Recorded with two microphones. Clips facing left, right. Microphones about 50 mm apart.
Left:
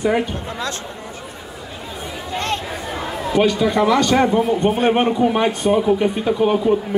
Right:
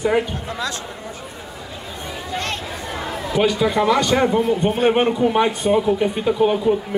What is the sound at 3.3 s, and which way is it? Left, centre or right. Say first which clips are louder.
Speech: left 1 dB; centre.